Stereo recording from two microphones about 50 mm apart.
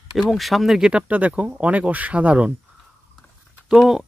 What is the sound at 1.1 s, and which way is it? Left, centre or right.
Speech, right.